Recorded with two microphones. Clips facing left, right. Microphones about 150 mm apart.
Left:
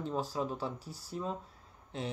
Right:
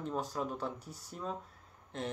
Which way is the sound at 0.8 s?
20° right (ahead or behind).